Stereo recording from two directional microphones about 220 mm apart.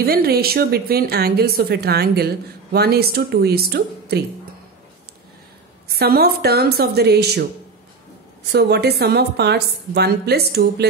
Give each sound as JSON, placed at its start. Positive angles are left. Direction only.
{"t": 0.0, "sound": "a woman's voice", "side_deg": -45}
{"t": 5.9, "sound": "a woman's voice", "side_deg": -45}
{"t": 8.5, "sound": "a woman's voice", "side_deg": -50}